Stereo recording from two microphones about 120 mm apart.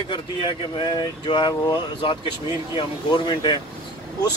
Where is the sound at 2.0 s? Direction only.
45° left (ahead or behind).